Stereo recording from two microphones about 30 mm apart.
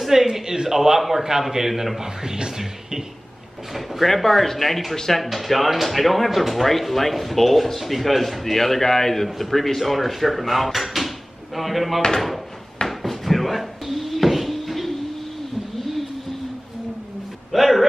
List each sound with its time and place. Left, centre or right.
0.0 s a man's voice: centre
2.5 s music: centre
3.7 s speech: centre
12.8 s a sound: centre
17.5 s speech: centre